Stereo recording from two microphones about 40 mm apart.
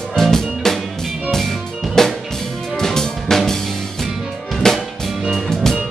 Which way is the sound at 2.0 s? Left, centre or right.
Centre.